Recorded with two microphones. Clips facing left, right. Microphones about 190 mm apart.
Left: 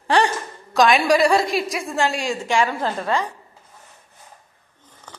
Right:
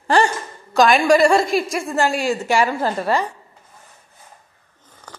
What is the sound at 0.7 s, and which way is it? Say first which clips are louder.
A woman's voice: right 2 dB; centre (ahead or behind).